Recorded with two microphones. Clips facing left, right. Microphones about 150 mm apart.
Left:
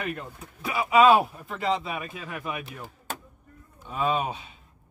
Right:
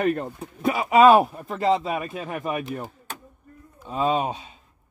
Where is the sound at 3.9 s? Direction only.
35° right (ahead or behind).